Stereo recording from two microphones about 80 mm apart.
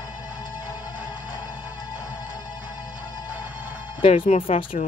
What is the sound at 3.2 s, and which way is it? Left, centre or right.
Music, right.